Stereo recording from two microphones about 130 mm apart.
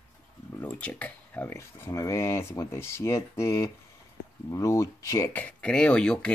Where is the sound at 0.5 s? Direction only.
10° left (ahead or behind).